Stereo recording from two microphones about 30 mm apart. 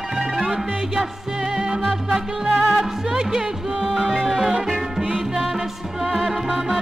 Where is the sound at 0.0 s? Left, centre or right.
Centre.